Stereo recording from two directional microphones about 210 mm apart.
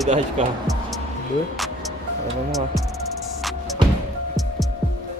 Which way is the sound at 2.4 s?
Centre (ahead or behind).